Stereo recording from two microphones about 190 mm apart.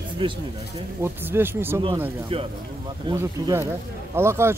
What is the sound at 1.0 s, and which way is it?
Speech, 10° right (ahead or behind).